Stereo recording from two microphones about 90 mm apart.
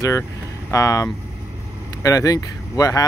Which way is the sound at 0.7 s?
40° left (ahead or behind).